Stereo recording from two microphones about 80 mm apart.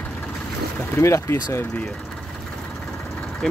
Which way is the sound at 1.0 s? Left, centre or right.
Left.